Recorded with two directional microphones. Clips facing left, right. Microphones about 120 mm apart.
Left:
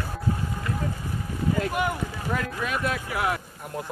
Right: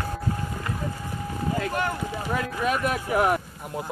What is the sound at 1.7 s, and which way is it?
Clip-clop, 15° left (ahead or behind).